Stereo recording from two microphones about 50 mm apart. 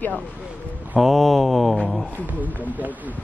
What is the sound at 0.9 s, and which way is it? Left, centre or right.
Mantra, centre.